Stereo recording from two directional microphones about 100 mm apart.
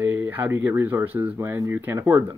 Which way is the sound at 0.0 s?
20° right (ahead or behind).